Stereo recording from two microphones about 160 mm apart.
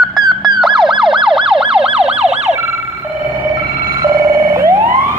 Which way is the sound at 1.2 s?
Centre (ahead or behind).